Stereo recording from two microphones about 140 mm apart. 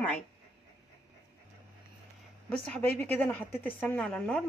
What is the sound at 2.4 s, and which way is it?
Speech, 10° left (ahead or behind).